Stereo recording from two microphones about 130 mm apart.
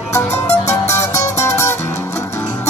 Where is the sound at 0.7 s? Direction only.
20° left (ahead or behind).